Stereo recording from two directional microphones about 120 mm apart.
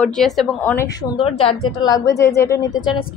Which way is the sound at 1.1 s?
50° left (ahead or behind).